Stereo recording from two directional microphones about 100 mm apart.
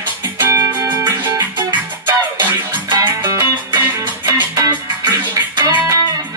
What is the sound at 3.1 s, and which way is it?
Music, 30° right (ahead or behind).